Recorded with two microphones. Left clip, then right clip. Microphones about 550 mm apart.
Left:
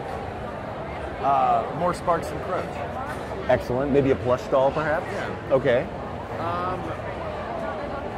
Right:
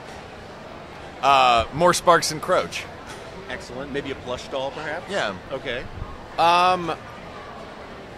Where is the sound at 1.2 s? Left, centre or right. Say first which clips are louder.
Right 4 dB; right.